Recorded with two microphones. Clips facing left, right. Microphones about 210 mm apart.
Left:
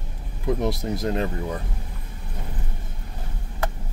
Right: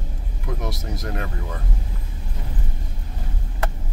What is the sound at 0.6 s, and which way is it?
Speech, 25° left (ahead or behind).